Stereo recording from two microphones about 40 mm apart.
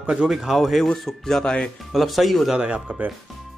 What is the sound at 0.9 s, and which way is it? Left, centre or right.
Speech, centre.